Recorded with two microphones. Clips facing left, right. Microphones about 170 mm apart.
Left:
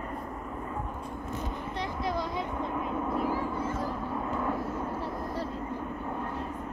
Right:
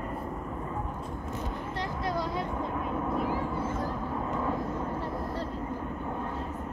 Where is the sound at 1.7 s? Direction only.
Centre (ahead or behind).